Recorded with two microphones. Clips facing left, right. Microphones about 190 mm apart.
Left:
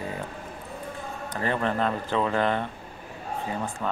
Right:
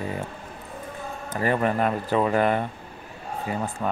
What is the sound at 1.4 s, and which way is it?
Speech, 10° right (ahead or behind).